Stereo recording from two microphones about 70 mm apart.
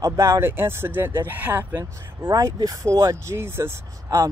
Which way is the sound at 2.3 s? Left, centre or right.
Right.